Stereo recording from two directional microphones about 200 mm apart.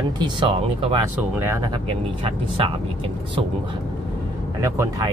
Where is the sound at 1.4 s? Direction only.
15° right (ahead or behind).